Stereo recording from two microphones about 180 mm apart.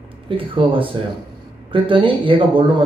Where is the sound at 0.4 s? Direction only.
30° right (ahead or behind).